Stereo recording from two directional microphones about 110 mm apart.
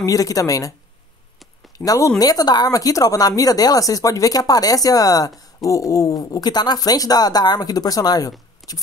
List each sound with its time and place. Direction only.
0.0 s speech: 30° left (ahead or behind)
1.9 s speech: 30° left (ahead or behind)